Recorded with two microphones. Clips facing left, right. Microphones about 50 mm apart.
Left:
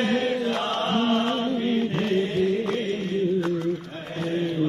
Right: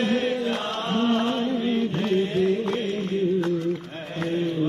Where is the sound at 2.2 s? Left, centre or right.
Right.